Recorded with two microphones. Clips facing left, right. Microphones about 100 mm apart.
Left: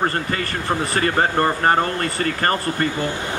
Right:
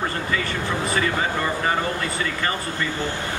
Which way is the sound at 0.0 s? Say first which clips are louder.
Left 3 dB; 50° left (ahead or behind).